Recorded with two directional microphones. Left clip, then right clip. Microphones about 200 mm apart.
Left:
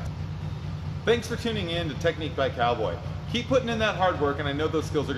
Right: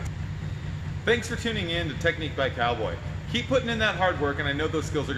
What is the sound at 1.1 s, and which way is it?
Speech, centre (ahead or behind).